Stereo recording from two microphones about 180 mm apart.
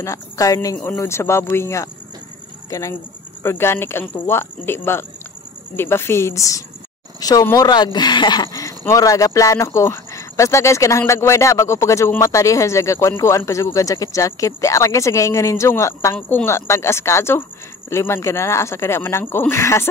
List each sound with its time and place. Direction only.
0.0 s speech: 15° left (ahead or behind)